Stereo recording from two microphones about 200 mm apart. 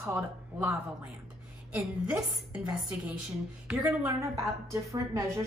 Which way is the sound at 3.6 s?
10° right (ahead or behind).